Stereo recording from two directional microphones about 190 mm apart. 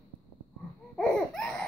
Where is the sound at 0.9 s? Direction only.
5° left (ahead or behind).